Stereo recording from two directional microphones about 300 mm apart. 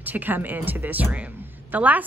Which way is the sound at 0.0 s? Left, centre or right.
Centre.